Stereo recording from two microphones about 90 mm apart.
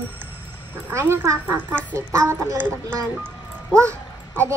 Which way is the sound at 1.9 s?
15° left (ahead or behind).